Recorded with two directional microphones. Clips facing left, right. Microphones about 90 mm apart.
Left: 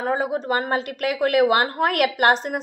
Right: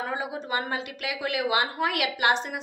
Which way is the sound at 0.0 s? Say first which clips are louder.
Left 8 dB; 45° left (ahead or behind).